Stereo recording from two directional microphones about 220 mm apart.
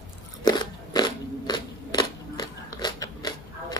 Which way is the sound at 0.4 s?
20° left (ahead or behind).